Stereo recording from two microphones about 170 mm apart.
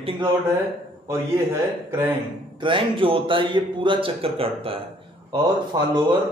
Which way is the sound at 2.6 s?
30° right (ahead or behind).